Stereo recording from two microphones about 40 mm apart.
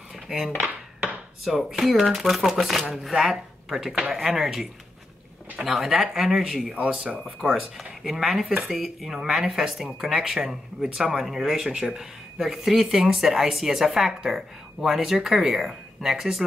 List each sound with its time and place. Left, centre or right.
0.1 s cutlery: centre
1.7 s speech: centre
6.7 s speech: right
7.5 s speech: centre